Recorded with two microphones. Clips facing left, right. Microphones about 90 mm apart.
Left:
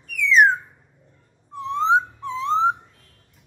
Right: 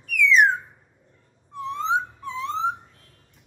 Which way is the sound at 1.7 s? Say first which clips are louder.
Left 6 dB; 30° left (ahead or behind).